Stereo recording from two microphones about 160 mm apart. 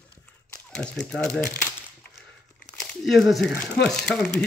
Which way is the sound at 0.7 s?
5° left (ahead or behind).